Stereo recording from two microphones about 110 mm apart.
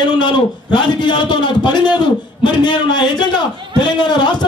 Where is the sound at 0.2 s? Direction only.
45° left (ahead or behind).